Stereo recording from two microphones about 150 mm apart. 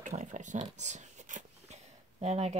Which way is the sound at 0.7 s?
50° right (ahead or behind).